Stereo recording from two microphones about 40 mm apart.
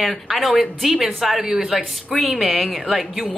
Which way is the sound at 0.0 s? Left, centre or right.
Centre.